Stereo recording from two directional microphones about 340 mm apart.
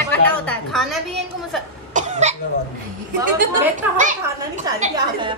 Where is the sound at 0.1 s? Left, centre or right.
Centre.